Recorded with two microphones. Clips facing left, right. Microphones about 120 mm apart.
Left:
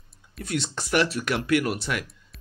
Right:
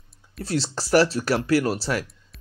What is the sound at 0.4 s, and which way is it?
A man's voice, 30° right (ahead or behind).